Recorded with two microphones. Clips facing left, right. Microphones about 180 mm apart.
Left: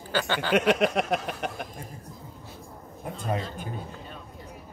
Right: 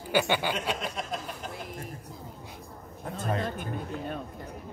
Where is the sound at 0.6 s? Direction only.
70° left (ahead or behind).